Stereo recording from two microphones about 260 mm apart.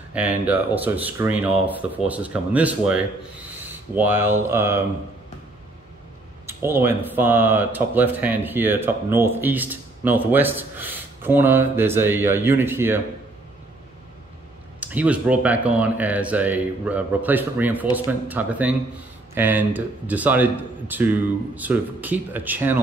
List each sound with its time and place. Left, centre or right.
0.1 s speech: centre
6.4 s speech: centre
14.8 s speech: centre